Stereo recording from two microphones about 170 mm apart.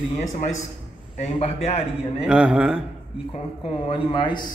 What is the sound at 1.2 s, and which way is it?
Speech, 40° left (ahead or behind).